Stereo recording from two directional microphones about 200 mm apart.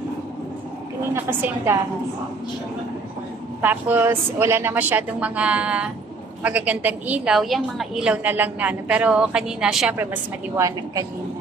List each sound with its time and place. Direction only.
1.1 s a woman's voice: 10° right (ahead or behind)
3.6 s a woman's voice: 10° right (ahead or behind)
10.5 s a woman's voice: 15° right (ahead or behind)